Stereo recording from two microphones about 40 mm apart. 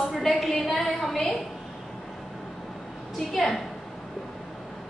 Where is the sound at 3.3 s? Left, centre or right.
Centre.